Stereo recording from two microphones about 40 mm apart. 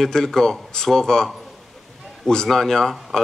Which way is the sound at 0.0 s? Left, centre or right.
Centre.